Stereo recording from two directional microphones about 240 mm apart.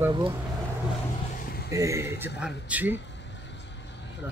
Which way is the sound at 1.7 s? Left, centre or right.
Centre.